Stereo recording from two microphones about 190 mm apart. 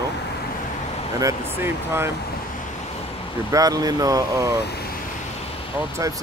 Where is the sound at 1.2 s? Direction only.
15° right (ahead or behind).